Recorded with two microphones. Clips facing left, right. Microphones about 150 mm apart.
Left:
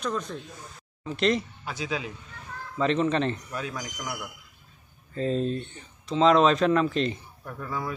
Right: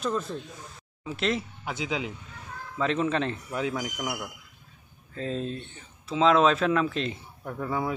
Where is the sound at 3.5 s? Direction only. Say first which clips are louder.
Right 5 dB; 20° right (ahead or behind).